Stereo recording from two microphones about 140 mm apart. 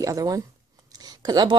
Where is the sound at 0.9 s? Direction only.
30° right (ahead or behind).